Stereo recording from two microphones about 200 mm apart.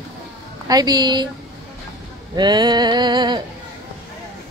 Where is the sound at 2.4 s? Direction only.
20° right (ahead or behind).